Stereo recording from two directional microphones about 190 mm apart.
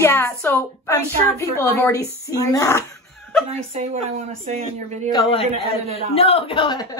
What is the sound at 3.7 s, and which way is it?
Speech, 35° right (ahead or behind).